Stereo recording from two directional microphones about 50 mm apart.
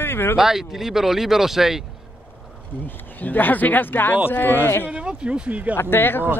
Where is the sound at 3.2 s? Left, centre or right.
Left.